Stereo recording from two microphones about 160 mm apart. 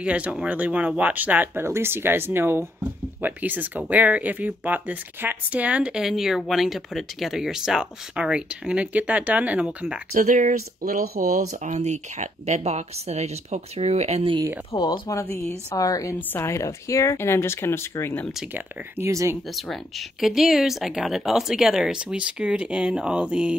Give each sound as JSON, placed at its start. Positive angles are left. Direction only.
{"t": 0.0, "sound": "speech", "side_deg": -5}
{"t": 10.1, "sound": "speech", "side_deg": -55}
{"t": 14.7, "sound": "speech", "side_deg": 30}
{"t": 15.3, "sound": "a woman's voice", "side_deg": 20}
{"t": 18.5, "sound": "speech", "side_deg": -15}
{"t": 19.5, "sound": "speech", "side_deg": 0}